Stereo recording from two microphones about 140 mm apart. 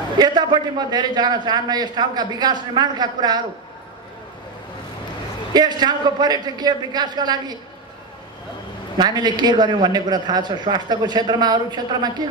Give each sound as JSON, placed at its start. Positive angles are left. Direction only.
{"t": 0.2, "sound": "a man's voice", "side_deg": -30}
{"t": 5.5, "sound": "a man's voice", "side_deg": -30}
{"t": 8.9, "sound": "a man's voice", "side_deg": -30}